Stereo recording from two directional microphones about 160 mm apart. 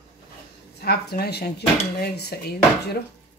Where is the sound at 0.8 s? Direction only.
75° left (ahead or behind).